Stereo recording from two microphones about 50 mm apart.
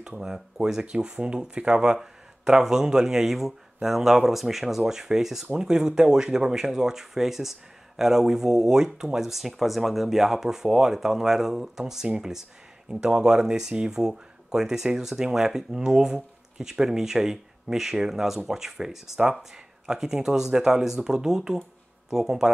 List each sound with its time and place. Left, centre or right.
0.0 s speech: centre